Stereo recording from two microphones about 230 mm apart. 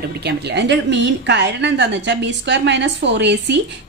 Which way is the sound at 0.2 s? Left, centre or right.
Right.